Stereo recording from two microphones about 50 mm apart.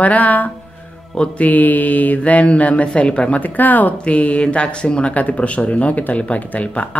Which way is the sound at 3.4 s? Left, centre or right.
Left.